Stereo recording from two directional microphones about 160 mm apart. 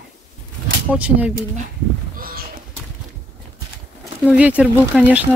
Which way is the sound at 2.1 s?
65° right (ahead or behind).